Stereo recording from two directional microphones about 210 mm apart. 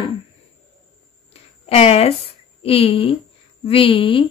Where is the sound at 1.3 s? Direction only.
30° left (ahead or behind).